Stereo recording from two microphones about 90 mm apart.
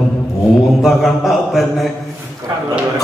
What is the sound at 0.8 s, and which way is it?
A man's voice, centre (ahead or behind).